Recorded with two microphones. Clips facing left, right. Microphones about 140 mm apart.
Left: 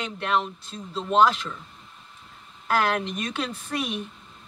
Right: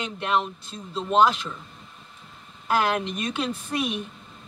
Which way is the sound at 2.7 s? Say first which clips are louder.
Right 1 dB; 15° right (ahead or behind).